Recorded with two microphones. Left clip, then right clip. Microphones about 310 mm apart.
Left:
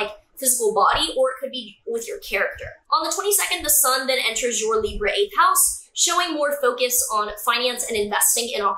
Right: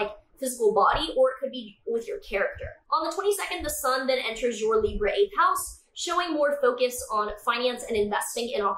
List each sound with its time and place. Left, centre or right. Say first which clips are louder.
0.6 s speech: left 2 dB; right
0.8 s speech: left 3 dB; centre